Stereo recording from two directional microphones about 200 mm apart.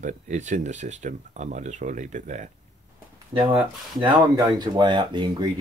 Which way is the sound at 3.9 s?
20° right (ahead or behind).